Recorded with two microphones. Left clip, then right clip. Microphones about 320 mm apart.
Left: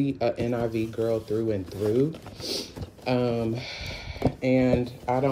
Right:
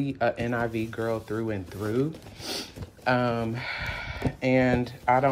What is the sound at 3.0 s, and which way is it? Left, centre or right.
Speech, centre.